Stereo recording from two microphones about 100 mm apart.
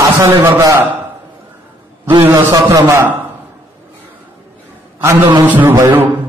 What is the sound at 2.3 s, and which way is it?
Speech, 40° right (ahead or behind).